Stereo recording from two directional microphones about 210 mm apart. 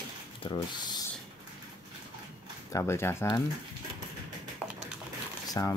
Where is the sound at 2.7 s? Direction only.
10° left (ahead or behind).